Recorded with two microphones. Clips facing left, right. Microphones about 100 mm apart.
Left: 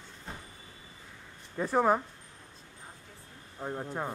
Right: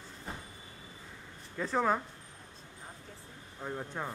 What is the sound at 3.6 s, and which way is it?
Speech, 15° left (ahead or behind).